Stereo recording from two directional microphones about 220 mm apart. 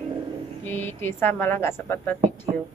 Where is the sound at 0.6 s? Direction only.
10° left (ahead or behind).